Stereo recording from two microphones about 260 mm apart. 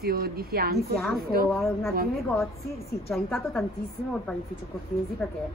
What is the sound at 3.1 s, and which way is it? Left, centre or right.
Speech, centre.